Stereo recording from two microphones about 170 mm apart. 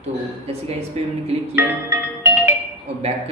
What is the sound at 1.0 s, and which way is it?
Speech, 40° right (ahead or behind).